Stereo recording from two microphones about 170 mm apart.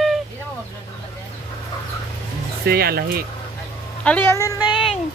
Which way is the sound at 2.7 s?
65° right (ahead or behind).